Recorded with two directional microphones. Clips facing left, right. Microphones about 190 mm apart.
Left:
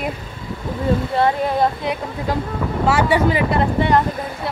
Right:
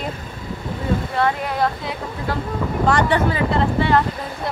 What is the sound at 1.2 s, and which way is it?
Speech, 25° left (ahead or behind).